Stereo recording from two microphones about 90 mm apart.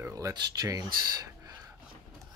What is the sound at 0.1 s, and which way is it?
Speech, 40° right (ahead or behind).